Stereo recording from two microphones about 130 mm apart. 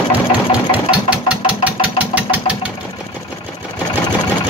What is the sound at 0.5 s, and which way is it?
Engine, 10° right (ahead or behind).